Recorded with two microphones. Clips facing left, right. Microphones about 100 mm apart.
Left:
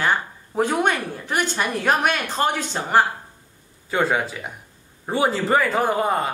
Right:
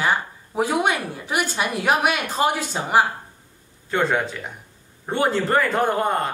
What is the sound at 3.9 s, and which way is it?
Speech, 5° left (ahead or behind).